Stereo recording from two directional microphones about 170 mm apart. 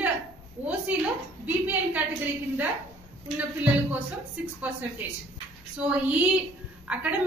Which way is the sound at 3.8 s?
10° right (ahead or behind).